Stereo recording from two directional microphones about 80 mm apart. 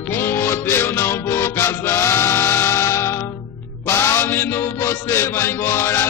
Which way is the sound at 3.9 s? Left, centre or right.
Left.